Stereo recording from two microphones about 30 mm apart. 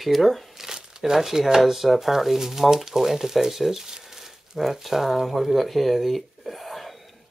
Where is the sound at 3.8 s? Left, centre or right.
Centre.